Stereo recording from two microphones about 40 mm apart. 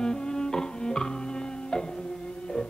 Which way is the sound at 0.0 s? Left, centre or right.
Centre.